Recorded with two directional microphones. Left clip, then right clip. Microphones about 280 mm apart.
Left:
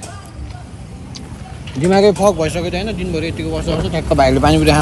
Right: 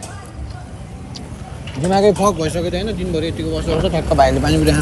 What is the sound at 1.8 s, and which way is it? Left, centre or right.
Speech, left.